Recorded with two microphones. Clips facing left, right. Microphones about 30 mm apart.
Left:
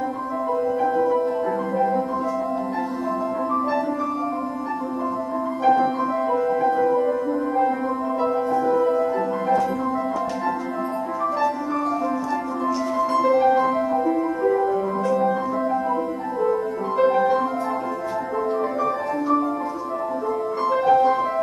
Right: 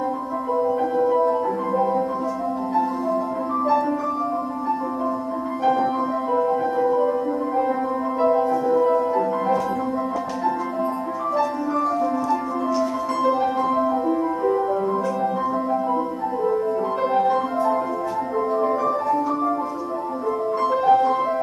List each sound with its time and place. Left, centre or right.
13.1 s music: centre
15.1 s music: centre
16.9 s music: centre
20.7 s music: centre